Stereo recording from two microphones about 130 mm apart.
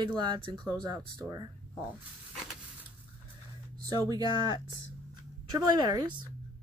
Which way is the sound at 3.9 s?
30° right (ahead or behind).